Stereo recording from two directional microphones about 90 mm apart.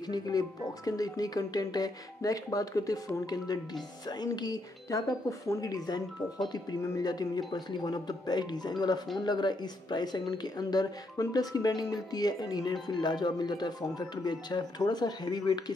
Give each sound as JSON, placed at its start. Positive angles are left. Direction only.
{"t": 0.1, "sound": "speech", "side_deg": 45}